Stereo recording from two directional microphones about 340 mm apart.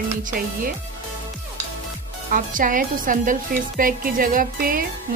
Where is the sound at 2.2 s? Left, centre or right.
Right.